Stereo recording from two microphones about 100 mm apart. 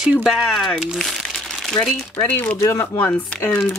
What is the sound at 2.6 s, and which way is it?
Speech, 25° left (ahead or behind).